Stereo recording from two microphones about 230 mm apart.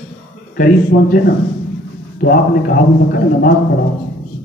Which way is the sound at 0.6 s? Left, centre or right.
Left.